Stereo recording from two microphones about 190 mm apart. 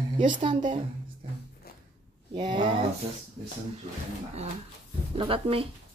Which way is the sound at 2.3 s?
25° right (ahead or behind).